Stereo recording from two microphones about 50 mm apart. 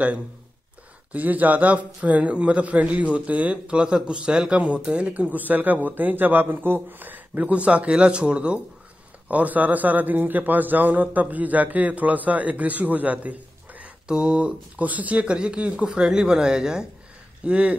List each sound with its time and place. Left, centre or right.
1.1 s a man's voice: right
9.3 s a man's voice: right
14.8 s a man's voice: right